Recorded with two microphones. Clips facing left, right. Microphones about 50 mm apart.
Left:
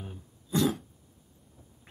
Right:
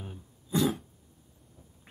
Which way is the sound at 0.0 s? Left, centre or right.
Centre.